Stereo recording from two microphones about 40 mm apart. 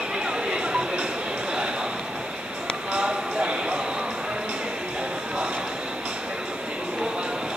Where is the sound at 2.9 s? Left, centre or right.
Right.